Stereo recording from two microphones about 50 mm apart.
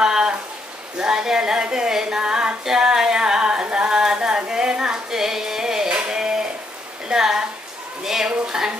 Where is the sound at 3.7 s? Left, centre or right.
Centre.